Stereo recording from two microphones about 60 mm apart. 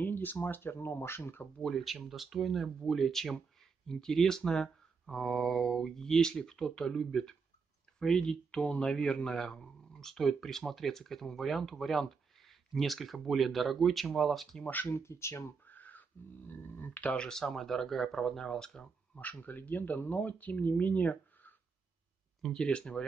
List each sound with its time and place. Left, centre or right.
0.0 s speech: left
1.6 s a man's voice: centre
14.6 s speech: left
14.9 s speech: left
15.6 s speech: left
17.1 s speech: centre
19.1 s speech: left
22.4 s speech: centre